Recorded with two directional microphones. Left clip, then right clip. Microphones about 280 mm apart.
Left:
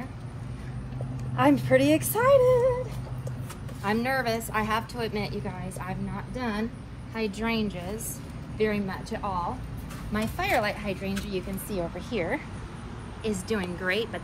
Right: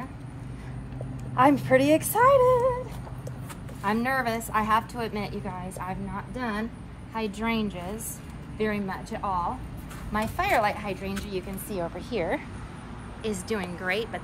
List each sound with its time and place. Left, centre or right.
1.3 s speech: right
3.8 s a woman's voice: centre